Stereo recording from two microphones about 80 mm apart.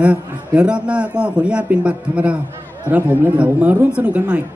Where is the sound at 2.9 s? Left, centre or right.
Right.